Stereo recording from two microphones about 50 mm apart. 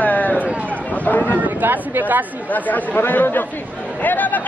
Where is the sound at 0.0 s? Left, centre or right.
Left.